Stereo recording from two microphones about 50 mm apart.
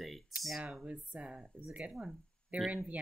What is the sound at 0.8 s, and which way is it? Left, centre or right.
Speech, right.